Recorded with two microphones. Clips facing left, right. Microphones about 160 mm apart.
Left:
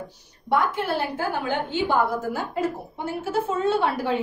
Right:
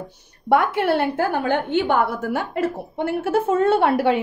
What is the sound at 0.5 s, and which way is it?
A woman's voice, 65° right (ahead or behind).